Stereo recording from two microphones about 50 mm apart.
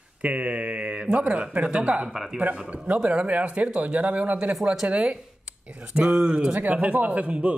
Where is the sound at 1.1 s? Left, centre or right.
Right.